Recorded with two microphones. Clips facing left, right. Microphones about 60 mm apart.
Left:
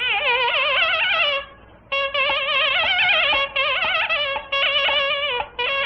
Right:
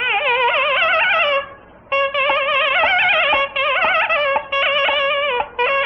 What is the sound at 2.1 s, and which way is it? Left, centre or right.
Music, right.